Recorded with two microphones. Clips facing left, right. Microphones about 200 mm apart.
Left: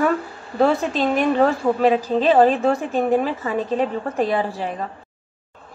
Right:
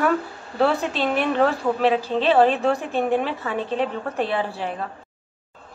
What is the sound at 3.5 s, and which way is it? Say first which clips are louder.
Speech: left 3 dB; 40° left (ahead or behind).